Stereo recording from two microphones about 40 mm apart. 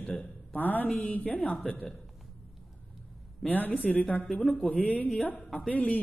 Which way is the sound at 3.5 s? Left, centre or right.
Left.